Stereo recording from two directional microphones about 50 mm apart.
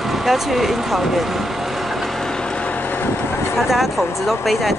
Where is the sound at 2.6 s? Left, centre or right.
Left.